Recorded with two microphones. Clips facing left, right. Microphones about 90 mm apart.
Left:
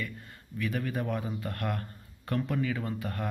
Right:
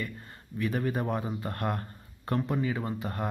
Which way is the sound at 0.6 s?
30° right (ahead or behind).